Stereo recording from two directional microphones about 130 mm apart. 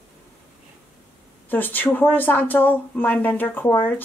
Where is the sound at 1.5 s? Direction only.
15° left (ahead or behind).